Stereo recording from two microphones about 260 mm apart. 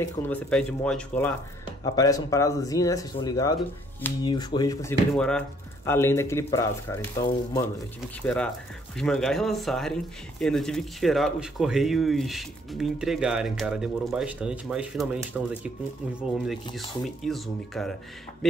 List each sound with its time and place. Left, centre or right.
0.0 s speech: centre
5.1 s speech: centre